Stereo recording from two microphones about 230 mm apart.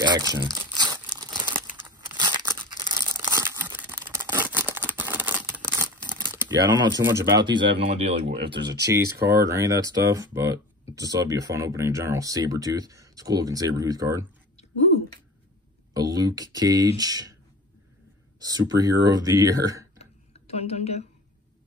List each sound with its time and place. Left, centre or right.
0.0 s speech: centre
1.2 s crumpling: centre
1.8 s tearing: centre
6.0 s speech: centre
8.9 s speech: centre
15.9 s speech: centre
18.4 s speech: centre
20.0 s tick-tock: left